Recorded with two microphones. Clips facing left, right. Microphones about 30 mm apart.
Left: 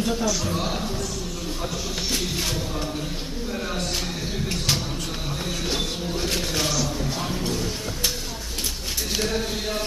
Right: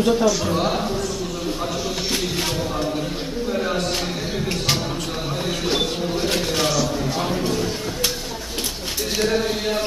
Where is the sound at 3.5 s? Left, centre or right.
Centre.